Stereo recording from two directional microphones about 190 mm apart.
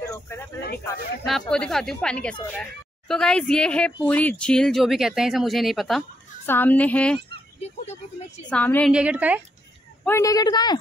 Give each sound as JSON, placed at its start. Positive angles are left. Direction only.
{"t": 0.0, "sound": "a sound", "side_deg": 15}
{"t": 1.5, "sound": "speech", "side_deg": 5}
{"t": 6.4, "sound": "speech", "side_deg": 10}
{"t": 8.5, "sound": "speech", "side_deg": 10}
{"t": 8.9, "sound": "speech", "side_deg": -5}
{"t": 10.0, "sound": "speech", "side_deg": 15}